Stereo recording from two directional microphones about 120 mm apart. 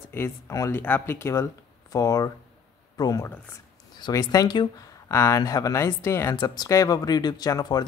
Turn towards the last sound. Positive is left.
turn(degrees=35)  # may be behind; listen again after turning